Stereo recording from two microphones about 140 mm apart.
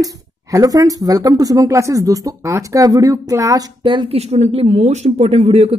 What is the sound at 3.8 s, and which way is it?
A woman's voice, 35° right (ahead or behind).